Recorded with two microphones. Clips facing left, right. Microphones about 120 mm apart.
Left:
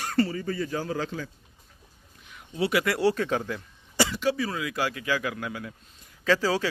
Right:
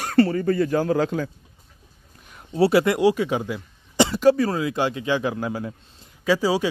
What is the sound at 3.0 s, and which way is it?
Speech, 15° right (ahead or behind).